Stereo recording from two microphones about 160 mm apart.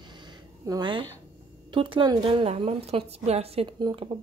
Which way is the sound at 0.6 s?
25° right (ahead or behind).